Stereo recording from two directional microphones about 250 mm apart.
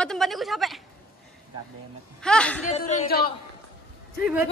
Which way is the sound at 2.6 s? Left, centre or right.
Left.